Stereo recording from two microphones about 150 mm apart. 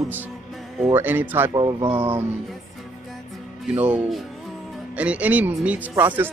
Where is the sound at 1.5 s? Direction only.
30° right (ahead or behind).